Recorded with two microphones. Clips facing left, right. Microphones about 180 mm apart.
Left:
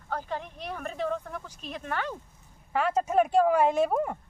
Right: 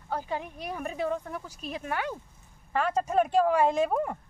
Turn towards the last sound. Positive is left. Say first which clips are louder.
# left 1 dB
turn(degrees=0)  # may be behind; listen again after turning